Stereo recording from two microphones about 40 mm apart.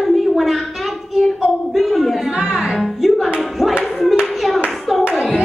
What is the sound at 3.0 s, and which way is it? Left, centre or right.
Music, centre.